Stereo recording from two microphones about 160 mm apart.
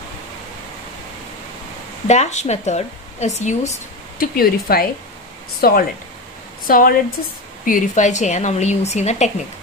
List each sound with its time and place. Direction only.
2.0 s a woman's voice: 45° left (ahead or behind)
4.2 s a woman's voice: 65° left (ahead or behind); by 9.3 s 45° left (ahead or behind)